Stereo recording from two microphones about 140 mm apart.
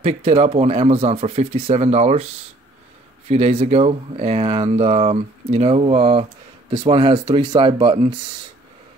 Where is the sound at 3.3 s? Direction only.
45° right (ahead or behind).